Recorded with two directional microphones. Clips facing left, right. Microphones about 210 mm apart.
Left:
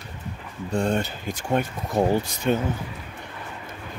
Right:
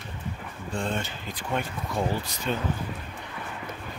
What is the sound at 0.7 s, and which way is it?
Speech, 40° left (ahead or behind).